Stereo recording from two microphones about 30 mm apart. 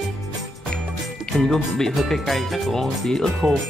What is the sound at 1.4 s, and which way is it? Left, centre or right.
Speech, centre.